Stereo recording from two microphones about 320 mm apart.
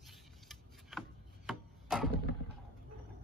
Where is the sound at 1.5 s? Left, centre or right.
Centre.